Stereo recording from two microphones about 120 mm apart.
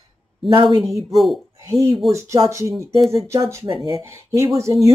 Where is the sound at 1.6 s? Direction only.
30° right (ahead or behind).